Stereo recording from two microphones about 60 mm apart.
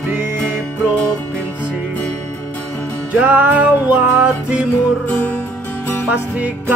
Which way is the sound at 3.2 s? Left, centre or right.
Right.